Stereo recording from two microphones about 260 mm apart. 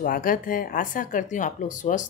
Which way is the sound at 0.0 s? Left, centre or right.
Left.